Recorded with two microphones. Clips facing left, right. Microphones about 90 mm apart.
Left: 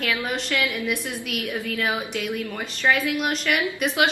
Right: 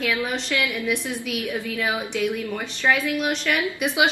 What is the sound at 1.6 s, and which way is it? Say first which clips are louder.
A woman's voice: even; centre (ahead or behind).